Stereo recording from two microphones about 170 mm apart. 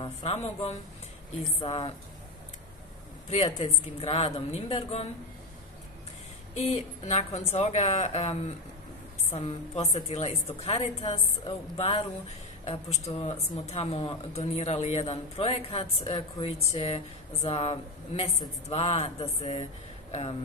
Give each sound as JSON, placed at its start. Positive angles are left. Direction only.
{"t": 0.0, "sound": "speech", "side_deg": 40}
{"t": 3.3, "sound": "speech", "side_deg": 40}
{"t": 6.5, "sound": "speech", "side_deg": 40}